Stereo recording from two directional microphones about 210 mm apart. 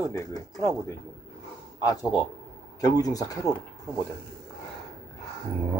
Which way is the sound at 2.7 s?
15° left (ahead or behind).